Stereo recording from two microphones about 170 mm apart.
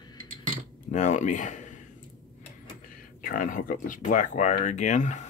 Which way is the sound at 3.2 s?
55° left (ahead or behind).